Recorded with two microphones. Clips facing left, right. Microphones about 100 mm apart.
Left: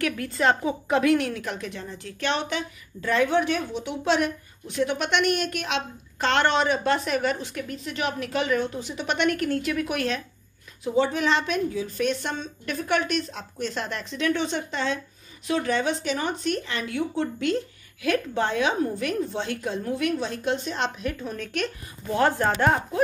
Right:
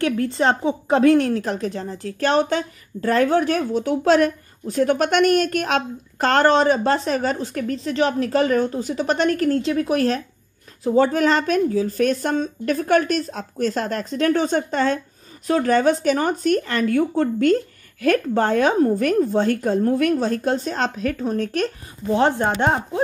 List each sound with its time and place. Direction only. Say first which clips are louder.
0.0 s a woman's voice: right 4 dB; 30° right (ahead or behind)
22.1 s speech: right 4 dB; 25° right (ahead or behind)